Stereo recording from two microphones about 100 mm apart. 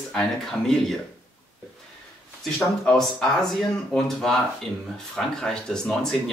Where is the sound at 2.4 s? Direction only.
5° left (ahead or behind).